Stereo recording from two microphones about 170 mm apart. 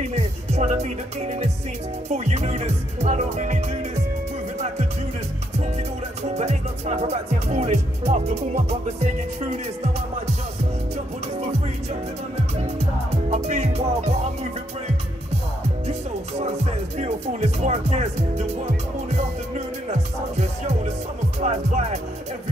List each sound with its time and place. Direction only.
0.1 s music: 40° right (ahead or behind)
2.0 s speech: 40° right (ahead or behind)
6.3 s speech: 40° right (ahead or behind)
13.1 s music: 40° right (ahead or behind)
15.9 s music: 40° right (ahead or behind)
17.0 s speech: 40° right (ahead or behind)
21.4 s speech: 40° right (ahead or behind)